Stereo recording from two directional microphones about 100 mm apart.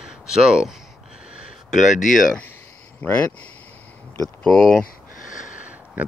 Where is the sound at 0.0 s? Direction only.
5° right (ahead or behind).